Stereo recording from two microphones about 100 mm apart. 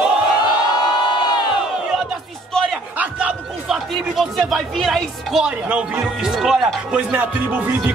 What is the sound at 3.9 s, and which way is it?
Speech, centre (ahead or behind).